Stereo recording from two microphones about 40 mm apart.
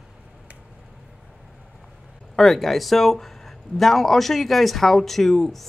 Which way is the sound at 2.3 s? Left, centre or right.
Centre.